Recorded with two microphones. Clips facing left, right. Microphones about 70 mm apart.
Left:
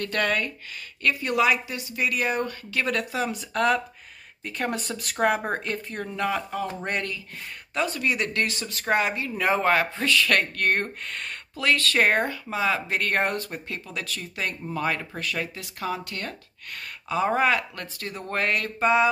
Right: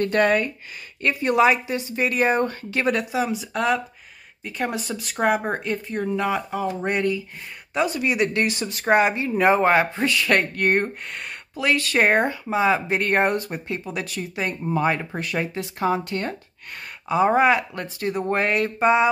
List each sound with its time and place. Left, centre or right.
0.0 s speech: right
2.9 s speech: centre